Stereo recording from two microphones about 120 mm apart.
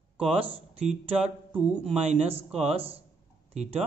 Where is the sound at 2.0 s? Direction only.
55° right (ahead or behind).